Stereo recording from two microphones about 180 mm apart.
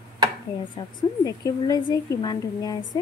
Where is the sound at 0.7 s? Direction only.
20° left (ahead or behind).